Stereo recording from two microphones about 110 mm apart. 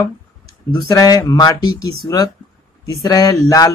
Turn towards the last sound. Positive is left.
turn(degrees=35)  # may be behind; listen again after turning